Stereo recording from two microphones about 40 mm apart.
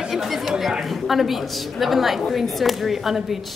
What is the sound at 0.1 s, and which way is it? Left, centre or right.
A woman's voice, centre.